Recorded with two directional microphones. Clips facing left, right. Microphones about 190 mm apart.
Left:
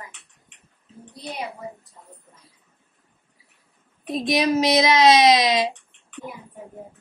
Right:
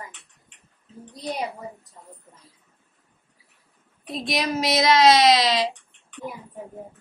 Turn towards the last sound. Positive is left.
turn(degrees=15)  # may be behind; listen again after turning